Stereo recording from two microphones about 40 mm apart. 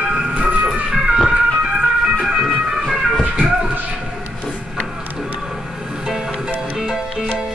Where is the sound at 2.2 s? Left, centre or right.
Centre.